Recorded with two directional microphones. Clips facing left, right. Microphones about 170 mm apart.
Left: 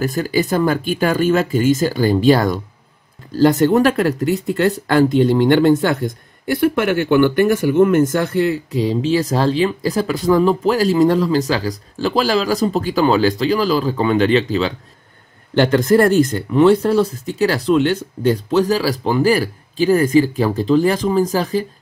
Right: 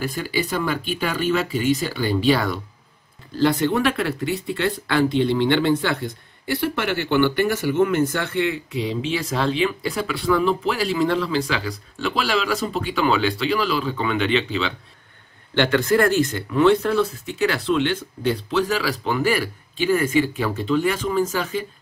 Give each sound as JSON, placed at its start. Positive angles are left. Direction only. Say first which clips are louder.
{"t": 0.0, "sound": "speech", "louder": "left 7 dB", "side_deg": 45}